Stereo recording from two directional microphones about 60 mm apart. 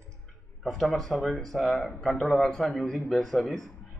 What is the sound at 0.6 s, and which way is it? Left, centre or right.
A man's voice, centre.